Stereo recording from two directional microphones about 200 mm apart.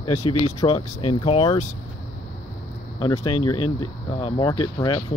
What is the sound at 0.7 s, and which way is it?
Speech, 30° left (ahead or behind).